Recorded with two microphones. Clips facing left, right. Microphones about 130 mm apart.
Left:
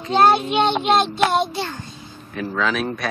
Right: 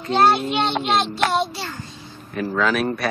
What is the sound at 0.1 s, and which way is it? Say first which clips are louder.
Child singing: left 2 dB; 15° left (ahead or behind).